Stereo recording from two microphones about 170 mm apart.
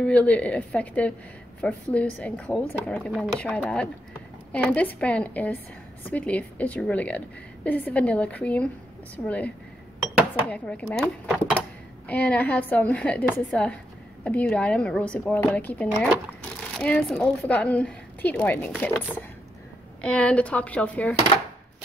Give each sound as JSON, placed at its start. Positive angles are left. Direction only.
{"t": 0.0, "sound": "a woman's voice", "side_deg": 10}